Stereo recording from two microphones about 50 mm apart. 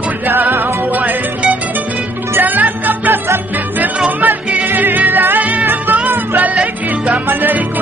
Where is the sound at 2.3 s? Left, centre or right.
Right.